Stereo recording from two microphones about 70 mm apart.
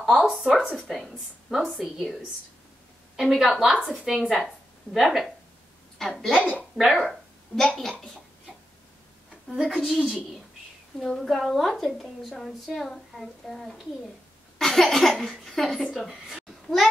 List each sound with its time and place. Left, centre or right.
0.0 s a woman's voice: centre
3.2 s a woman's voice: centre
6.3 s a woman's voice: centre
6.8 s speech: centre
9.5 s a woman's voice: centre
11.0 s a woman's voice: centre
16.3 s a sound: centre